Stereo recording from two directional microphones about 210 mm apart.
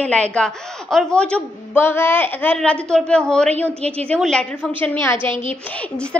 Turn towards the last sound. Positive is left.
turn(degrees=5)  # may be behind; listen again after turning